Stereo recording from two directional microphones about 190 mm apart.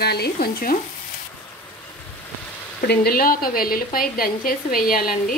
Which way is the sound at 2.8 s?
55° left (ahead or behind).